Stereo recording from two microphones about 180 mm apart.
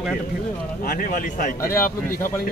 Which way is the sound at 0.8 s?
50° left (ahead or behind).